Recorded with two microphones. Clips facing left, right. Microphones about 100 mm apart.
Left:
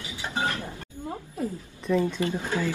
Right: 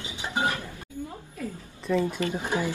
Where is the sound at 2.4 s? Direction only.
15° right (ahead or behind).